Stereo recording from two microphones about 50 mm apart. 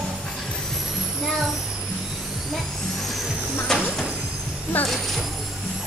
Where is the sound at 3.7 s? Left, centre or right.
Centre.